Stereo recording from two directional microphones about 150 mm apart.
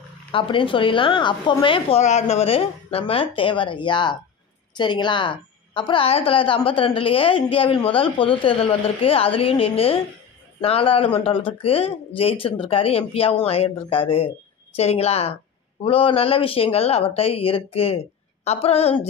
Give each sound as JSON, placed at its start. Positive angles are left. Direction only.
{"t": 0.3, "sound": "a woman's voice", "side_deg": 35}